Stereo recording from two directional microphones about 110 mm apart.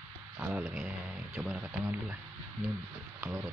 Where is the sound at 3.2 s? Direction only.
10° right (ahead or behind).